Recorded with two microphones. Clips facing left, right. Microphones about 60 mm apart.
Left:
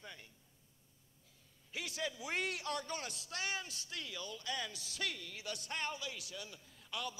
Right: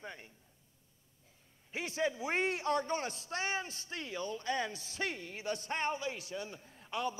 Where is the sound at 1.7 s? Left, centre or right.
Right.